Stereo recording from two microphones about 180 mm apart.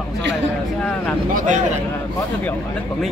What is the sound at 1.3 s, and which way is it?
Speech, 45° right (ahead or behind).